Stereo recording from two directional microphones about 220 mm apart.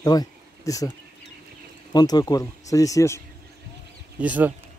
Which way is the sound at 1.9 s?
20° left (ahead or behind).